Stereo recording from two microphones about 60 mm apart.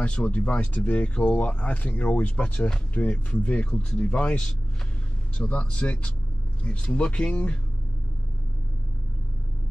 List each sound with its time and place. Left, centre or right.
0.0 s speech: left